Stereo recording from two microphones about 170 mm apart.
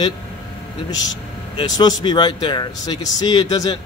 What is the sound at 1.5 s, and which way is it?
Speech, 25° left (ahead or behind).